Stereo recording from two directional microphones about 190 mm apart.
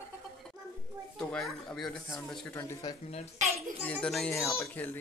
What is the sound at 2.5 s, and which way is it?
A child's voice, 15° left (ahead or behind).